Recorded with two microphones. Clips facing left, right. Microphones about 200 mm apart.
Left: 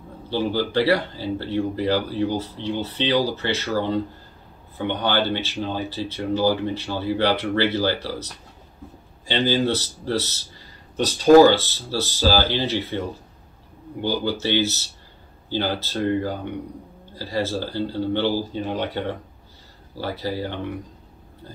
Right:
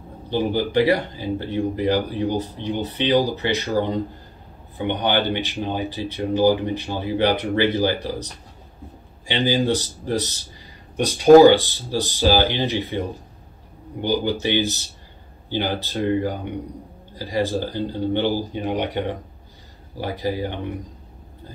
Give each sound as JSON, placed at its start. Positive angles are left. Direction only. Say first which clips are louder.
{"t": 0.3, "sound": "speech", "louder": "right 2 dB", "side_deg": -15}
{"t": 9.3, "sound": "speech", "louder": "right 1 dB", "side_deg": -15}
{"t": 14.0, "sound": "speech", "louder": "right 2 dB", "side_deg": -15}